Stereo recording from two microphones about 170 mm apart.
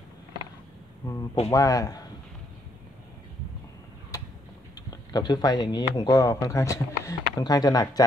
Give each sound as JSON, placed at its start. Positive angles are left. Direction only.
{"t": 1.5, "sound": "speech", "side_deg": 20}
{"t": 4.7, "sound": "speech", "side_deg": 25}